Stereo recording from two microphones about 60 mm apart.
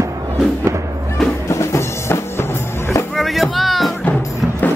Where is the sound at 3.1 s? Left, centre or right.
Centre.